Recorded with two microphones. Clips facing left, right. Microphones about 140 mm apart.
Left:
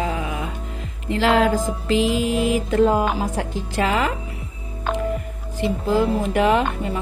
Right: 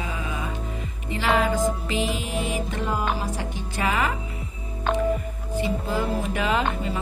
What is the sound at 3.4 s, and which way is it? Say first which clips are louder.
Speech: left 5 dB; 80° left.